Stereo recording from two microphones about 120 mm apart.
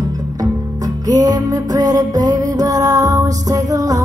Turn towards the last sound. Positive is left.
turn(degrees=-30)  # may be behind; listen again after turning